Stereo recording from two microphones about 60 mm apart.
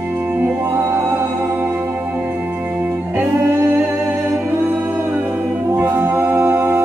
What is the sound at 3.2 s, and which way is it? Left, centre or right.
Music, right.